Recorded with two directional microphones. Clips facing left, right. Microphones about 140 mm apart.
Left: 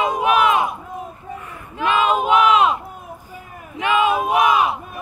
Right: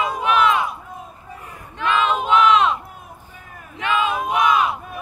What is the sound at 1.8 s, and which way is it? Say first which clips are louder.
Battle cry: left 2 dB; 15° left (ahead or behind).